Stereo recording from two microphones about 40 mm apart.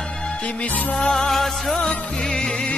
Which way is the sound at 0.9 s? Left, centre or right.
Centre.